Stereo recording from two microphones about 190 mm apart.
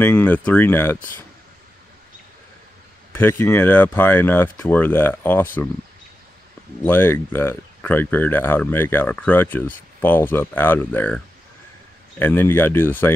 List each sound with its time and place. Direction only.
0.0 s speech: 10° left (ahead or behind)
3.1 s speech: 10° left (ahead or behind)
6.8 s speech: 10° left (ahead or behind)
12.2 s speech: 10° left (ahead or behind)